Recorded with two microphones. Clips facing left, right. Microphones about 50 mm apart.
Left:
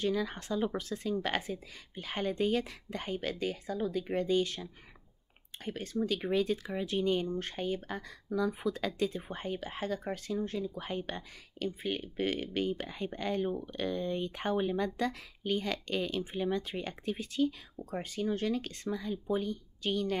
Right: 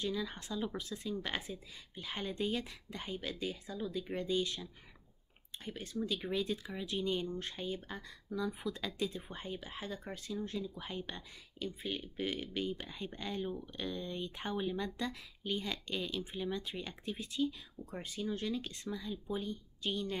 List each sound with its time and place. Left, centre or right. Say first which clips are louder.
0.0 s speech: left 6 dB; left